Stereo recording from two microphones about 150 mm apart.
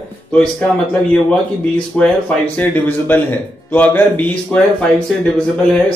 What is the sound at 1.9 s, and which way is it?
A man's voice, 5° left (ahead or behind).